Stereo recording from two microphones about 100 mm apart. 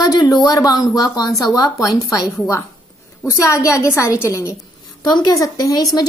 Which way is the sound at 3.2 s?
30° left (ahead or behind).